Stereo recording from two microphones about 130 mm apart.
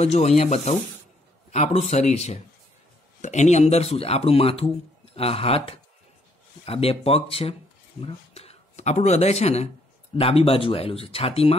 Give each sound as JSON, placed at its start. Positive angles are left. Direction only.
{"t": 0.0, "sound": "speech", "side_deg": 55}